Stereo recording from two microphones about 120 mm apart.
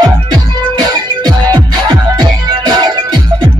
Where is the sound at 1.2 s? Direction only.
40° right (ahead or behind).